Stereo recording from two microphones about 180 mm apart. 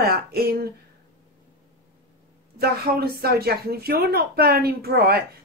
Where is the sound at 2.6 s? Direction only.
60° right (ahead or behind).